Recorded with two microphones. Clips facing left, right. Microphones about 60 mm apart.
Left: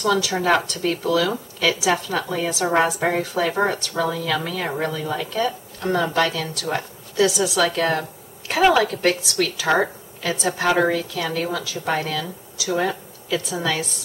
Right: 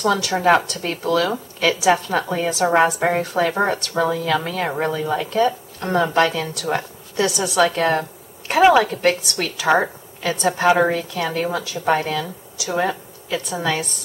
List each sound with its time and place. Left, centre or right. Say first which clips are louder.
0.3 s speech: right 3 dB; centre
6.4 s a woman's voice: right 2 dB; centre
9.8 s a woman's voice: right 1 dB; centre